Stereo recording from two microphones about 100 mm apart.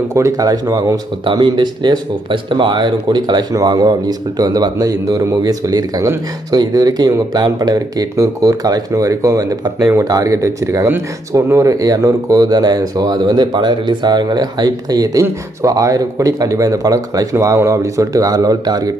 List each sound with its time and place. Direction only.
0.1 s speech: 35° right (ahead or behind)
1.2 s speech: 50° right (ahead or behind)